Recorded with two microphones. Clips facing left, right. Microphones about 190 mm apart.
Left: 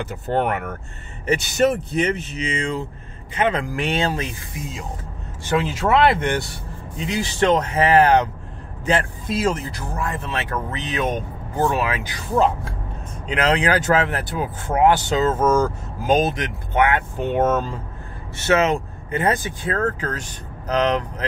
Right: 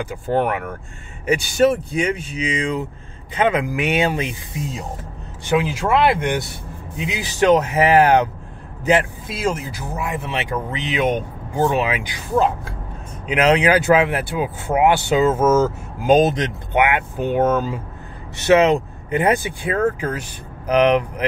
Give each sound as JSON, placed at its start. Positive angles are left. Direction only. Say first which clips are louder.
{"t": 0.0, "sound": "speech", "louder": "right 2 dB", "side_deg": -10}
{"t": 5.5, "sound": "speech", "louder": "right 1 dB", "side_deg": -10}
{"t": 13.3, "sound": "speech", "louder": "right 4 dB", "side_deg": -15}
{"t": 16.2, "sound": "speech", "louder": "right 5 dB", "side_deg": -20}
{"t": 17.2, "sound": "speech", "louder": "right 2 dB", "side_deg": 0}